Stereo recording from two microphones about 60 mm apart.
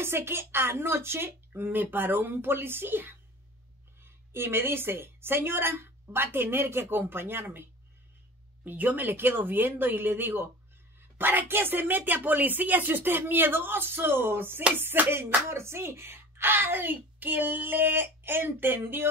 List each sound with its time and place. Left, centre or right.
0.0 s speech: right
8.6 s speech: right